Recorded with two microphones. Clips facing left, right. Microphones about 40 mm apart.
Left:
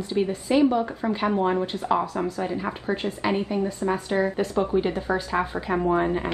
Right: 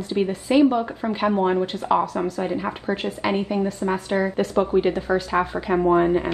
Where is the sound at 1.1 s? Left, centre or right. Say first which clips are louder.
Right 3 dB; centre.